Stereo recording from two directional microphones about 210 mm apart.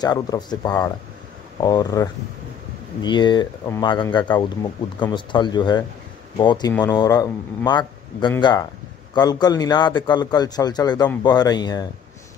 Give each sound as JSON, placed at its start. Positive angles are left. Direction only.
{"t": 0.0, "sound": "a man's voice", "side_deg": 20}